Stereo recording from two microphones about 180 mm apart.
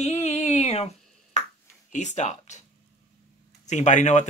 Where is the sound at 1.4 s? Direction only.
40° left (ahead or behind).